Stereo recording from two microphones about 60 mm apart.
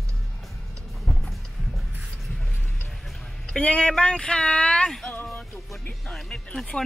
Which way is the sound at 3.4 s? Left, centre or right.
Centre.